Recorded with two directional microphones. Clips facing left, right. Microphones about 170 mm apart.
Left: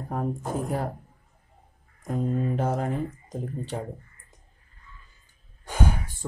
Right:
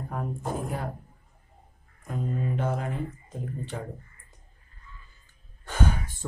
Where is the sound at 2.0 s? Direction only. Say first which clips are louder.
Left 4 dB; 40° left (ahead or behind).